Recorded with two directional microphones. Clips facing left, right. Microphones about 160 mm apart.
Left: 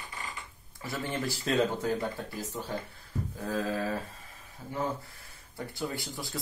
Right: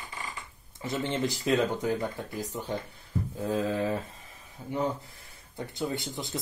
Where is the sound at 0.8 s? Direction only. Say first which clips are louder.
Right 4 dB; 20° right (ahead or behind).